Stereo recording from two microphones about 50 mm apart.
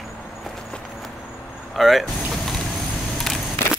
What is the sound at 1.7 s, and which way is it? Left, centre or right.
Vehicle, centre.